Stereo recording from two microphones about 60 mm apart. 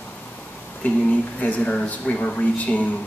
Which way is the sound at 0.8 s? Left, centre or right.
Left.